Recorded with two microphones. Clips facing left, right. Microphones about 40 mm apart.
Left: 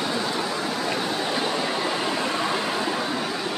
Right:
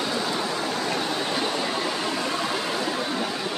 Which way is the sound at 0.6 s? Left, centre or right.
Centre.